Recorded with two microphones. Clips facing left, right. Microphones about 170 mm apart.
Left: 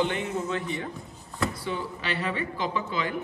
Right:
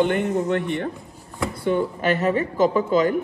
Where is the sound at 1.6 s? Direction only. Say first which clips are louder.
Right 11 dB; 50° right (ahead or behind).